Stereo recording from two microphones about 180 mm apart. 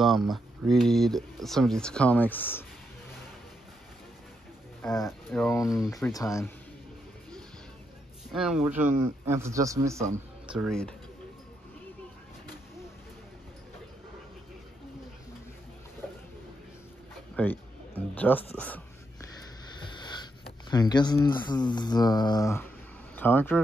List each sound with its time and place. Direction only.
0.0 s speech: centre (ahead or behind)
4.8 s speech: centre (ahead or behind)
6.0 s speech: 15° left (ahead or behind)
8.3 s a man's voice: 5° right (ahead or behind)
10.5 s speech: centre (ahead or behind)
17.4 s a man's voice: 10° left (ahead or behind)
20.0 s a sound: 25° left (ahead or behind)
20.7 s speech: 25° left (ahead or behind)